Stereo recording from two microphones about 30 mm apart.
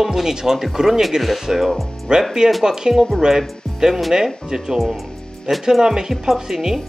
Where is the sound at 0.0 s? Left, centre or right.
Centre.